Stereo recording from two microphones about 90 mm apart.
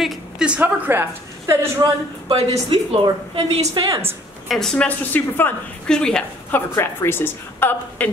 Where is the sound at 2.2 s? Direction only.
90° right.